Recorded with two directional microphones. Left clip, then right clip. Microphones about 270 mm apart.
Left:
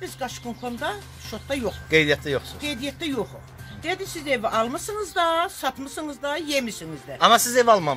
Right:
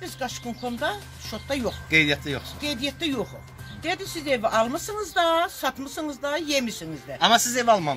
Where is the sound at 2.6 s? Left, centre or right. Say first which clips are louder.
Right 1 dB; centre.